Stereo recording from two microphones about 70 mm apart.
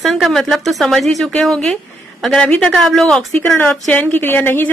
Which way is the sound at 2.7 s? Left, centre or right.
Centre.